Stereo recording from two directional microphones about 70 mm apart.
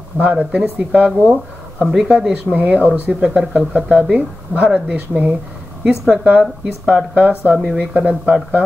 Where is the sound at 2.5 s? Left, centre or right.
Right.